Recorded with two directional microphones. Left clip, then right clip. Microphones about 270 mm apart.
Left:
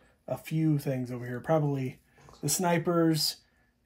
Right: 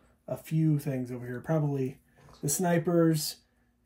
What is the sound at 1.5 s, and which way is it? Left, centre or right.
Speech, centre.